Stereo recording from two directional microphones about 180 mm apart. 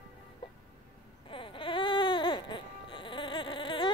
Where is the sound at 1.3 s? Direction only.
30° left (ahead or behind).